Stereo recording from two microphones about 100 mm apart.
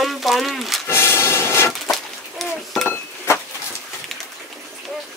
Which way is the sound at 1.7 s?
Centre (ahead or behind).